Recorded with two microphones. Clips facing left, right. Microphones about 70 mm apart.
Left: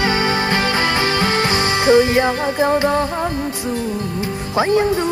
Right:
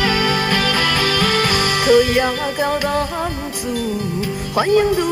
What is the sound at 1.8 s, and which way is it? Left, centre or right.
Music, left.